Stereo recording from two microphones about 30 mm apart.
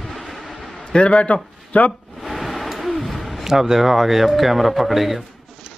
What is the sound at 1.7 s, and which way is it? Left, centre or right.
Speech, left.